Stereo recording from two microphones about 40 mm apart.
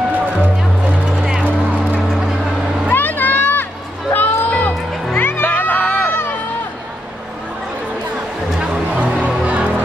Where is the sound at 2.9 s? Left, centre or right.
Left.